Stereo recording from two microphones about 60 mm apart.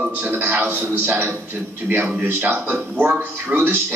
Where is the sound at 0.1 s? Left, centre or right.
Right.